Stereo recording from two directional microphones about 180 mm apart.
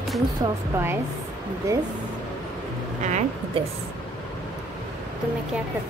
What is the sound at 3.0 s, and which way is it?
Speech, 40° right (ahead or behind).